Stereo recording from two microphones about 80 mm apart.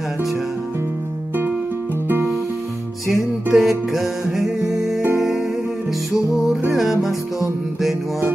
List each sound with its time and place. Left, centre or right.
2.0 s music: right
3.5 s music: centre
6.8 s music: centre